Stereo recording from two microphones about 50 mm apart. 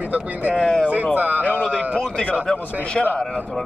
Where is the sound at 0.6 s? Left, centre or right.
Centre.